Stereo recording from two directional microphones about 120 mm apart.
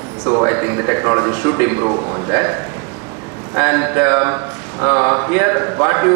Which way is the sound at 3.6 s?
20° right (ahead or behind).